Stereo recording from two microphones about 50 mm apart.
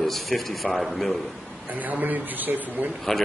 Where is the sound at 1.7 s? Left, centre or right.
Right.